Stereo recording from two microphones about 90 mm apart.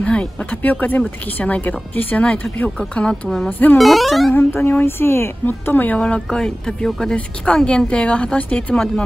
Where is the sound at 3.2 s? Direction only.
Centre (ahead or behind).